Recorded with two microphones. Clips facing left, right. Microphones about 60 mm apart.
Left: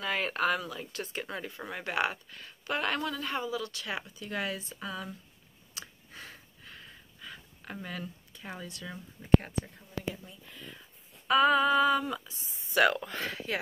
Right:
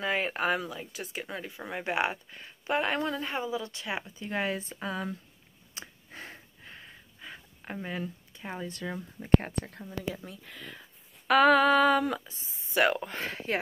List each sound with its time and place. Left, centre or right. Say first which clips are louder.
0.0 s speech: right 1 dB; centre
1.7 s a woman's voice: right 2 dB; centre; by 5.1 s right
5.8 s a sound: right 2 dB; right
8.6 s speech: right 6 dB; right
9.5 s female singing: right 1 dB; right
9.8 s speech: right 2 dB; right
11.2 s female singing: right 3 dB; right
12.5 s speech: even; right